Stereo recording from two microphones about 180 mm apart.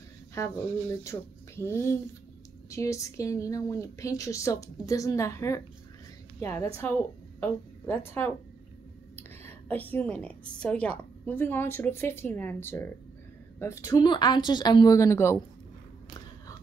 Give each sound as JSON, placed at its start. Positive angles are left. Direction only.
{"t": 0.4, "sound": "a woman's voice", "side_deg": 15}
{"t": 6.8, "sound": "a woman's voice", "side_deg": 10}
{"t": 9.5, "sound": "a woman's voice", "side_deg": 10}